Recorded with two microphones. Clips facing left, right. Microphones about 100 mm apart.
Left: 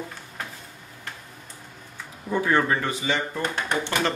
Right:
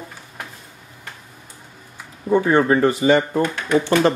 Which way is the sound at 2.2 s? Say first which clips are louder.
Right 6 dB; 20° right (ahead or behind).